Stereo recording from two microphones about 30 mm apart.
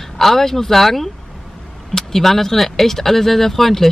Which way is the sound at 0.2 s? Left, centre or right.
Centre.